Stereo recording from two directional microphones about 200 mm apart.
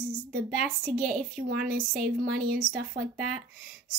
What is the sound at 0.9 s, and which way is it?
Speech, 45° right (ahead or behind).